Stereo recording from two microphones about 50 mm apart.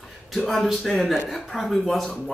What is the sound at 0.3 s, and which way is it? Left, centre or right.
Speech, centre.